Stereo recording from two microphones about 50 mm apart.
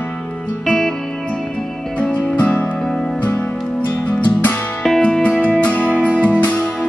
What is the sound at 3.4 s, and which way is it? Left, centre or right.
Music, left.